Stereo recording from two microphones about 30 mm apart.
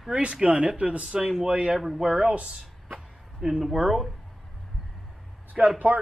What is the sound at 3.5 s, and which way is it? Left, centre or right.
Speech, centre.